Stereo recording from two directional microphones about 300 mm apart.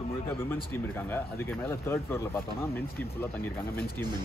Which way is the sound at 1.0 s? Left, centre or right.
Centre.